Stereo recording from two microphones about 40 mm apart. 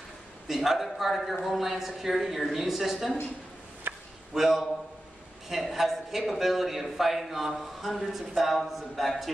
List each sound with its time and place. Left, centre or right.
0.5 s a man's voice: centre
3.9 s chop: right
4.3 s a man's voice: centre